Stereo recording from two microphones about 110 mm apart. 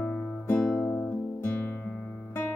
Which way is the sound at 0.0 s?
15° left (ahead or behind).